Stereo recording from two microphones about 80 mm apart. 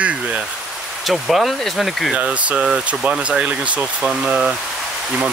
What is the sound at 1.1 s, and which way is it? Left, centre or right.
Speech, centre.